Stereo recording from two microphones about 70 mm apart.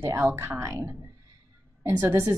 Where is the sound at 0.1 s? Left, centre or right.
Right.